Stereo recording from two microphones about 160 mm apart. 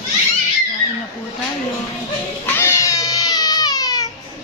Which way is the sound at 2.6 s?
15° left (ahead or behind).